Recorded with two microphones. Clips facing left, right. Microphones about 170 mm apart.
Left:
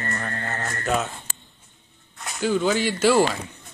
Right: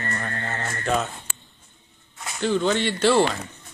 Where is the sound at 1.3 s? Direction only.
40° left (ahead or behind).